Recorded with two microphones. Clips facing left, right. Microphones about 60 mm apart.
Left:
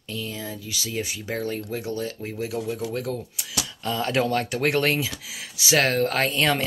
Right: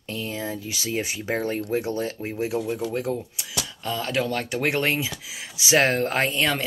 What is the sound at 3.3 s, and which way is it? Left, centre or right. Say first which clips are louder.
Speech: even; centre.